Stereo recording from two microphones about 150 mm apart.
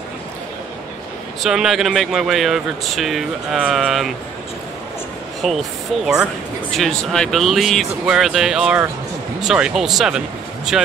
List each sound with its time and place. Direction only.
1.4 s speech: centre (ahead or behind)
5.4 s speech: centre (ahead or behind)